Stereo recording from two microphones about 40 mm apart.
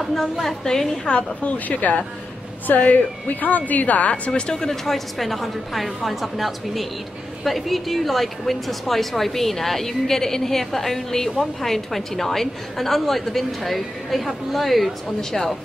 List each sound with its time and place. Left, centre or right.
0.0 s a woman's voice: centre
1.0 s a woman's voice: left
1.7 s a woman's voice: left
4.6 s a woman's voice: centre